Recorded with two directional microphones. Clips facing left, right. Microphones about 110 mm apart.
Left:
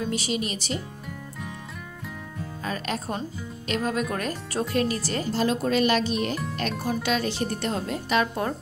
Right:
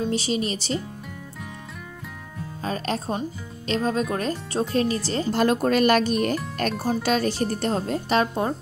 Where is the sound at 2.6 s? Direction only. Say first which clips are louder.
Right 3 dB; 35° right (ahead or behind).